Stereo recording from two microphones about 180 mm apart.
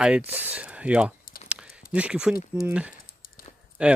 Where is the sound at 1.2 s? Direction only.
50° left (ahead or behind).